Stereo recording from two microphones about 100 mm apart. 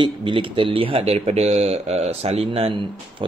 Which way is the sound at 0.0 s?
55° right (ahead or behind).